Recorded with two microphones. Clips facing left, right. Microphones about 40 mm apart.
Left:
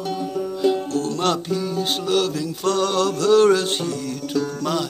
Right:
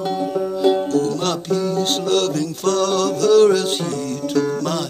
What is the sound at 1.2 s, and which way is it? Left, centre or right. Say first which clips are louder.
Music: right 1 dB; centre.